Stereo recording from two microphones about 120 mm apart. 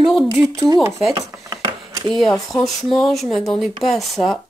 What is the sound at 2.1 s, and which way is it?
Speech, centre (ahead or behind).